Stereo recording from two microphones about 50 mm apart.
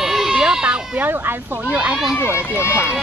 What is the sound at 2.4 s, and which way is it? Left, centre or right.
Speech, left.